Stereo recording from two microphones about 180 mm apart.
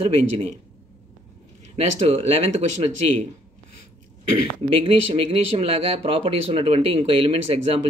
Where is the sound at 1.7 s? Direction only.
35° right (ahead or behind).